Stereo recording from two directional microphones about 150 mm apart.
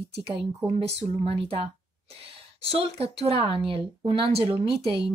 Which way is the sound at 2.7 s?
40° right (ahead or behind).